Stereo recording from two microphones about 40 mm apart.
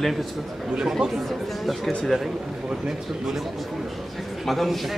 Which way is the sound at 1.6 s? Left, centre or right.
Centre.